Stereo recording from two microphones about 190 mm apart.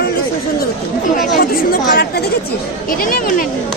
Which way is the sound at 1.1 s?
50° left (ahead or behind).